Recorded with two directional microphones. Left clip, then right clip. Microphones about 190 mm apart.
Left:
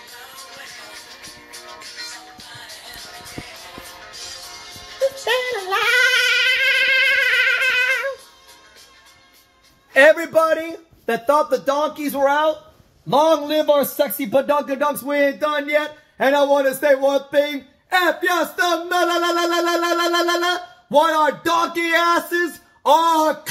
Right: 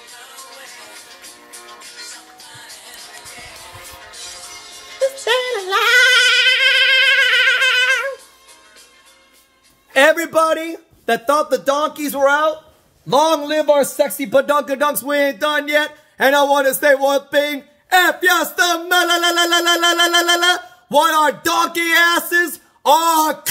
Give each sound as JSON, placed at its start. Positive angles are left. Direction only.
{"t": 1.5, "sound": "music", "side_deg": 15}
{"t": 5.2, "sound": "a sound", "side_deg": -10}
{"t": 9.9, "sound": "speech", "side_deg": -15}